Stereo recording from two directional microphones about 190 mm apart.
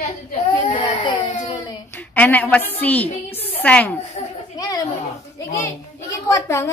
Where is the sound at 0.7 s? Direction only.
25° left (ahead or behind).